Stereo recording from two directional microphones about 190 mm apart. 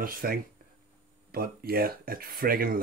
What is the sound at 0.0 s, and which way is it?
Speech, 50° right (ahead or behind).